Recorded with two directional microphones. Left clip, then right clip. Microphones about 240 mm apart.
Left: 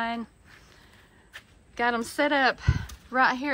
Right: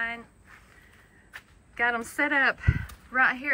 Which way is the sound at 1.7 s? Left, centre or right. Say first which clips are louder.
Even; centre.